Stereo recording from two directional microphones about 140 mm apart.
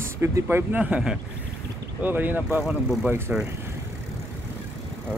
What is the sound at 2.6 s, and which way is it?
Speech, centre (ahead or behind).